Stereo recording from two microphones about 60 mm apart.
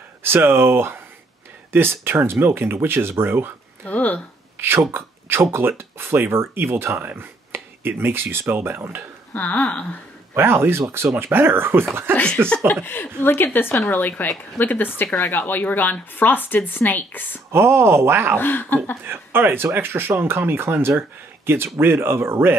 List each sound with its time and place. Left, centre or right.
0.2 s speech: right
3.8 s a sound: left
4.6 s speech: right
9.3 s speech: left
10.3 s speech: right
12.8 s a woman's voice: left
17.5 s speech: right
18.4 s a woman's voice: left
19.0 s speech: right